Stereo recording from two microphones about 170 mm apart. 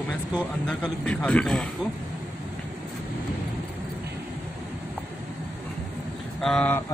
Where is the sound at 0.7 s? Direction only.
5° left (ahead or behind).